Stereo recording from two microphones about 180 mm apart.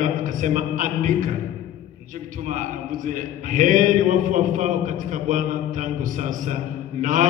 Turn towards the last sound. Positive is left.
turn(degrees=-45)  # may be behind; listen again after turning